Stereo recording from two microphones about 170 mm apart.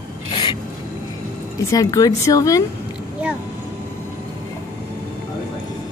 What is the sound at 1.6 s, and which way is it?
A woman's voice, 20° left (ahead or behind).